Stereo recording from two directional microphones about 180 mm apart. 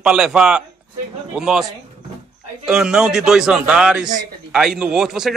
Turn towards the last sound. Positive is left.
turn(degrees=0)  # may be behind; listen again after turning